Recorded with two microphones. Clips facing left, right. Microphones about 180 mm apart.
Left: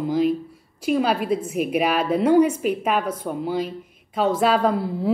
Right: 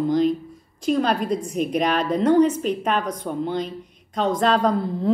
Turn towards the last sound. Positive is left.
turn(degrees=5)  # may be behind; listen again after turning